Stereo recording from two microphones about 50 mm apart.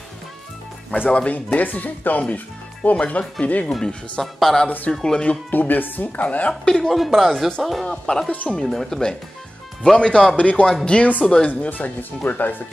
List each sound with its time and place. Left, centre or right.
1.1 s speech: left
4.2 s speech: centre
4.6 s speech: left
5.0 s speech: centre
5.5 s speech: left
6.6 s speech: centre
7.9 s speech: centre; by 12.5 s left